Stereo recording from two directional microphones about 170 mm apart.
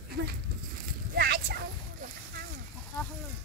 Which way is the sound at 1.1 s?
70° right (ahead or behind).